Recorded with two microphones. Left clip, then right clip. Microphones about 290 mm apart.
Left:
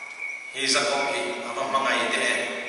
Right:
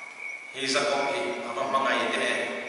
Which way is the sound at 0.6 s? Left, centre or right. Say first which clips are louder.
Left 2 dB; centre.